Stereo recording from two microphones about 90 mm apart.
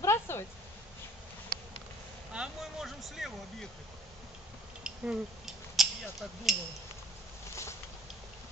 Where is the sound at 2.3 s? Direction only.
5° right (ahead or behind).